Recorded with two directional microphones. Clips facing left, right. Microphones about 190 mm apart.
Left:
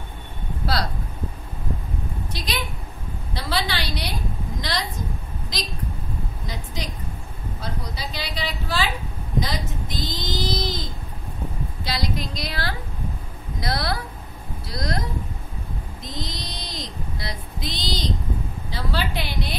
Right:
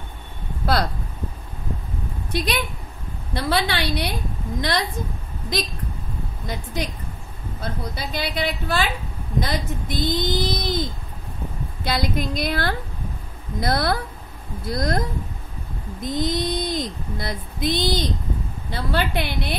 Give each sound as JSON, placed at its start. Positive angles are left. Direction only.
{"t": 2.3, "sound": "speech", "side_deg": -55}
{"t": 6.4, "sound": "speech", "side_deg": -55}
{"t": 11.8, "sound": "speech", "side_deg": -55}